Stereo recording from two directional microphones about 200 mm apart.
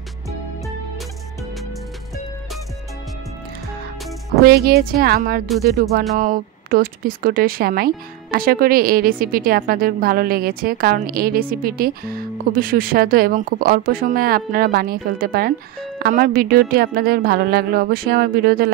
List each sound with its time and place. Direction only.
4.5 s speech: 50° right (ahead or behind)
6.1 s speech: 40° right (ahead or behind)